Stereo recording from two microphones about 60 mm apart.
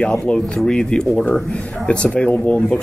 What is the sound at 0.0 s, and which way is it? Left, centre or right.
Speech, centre.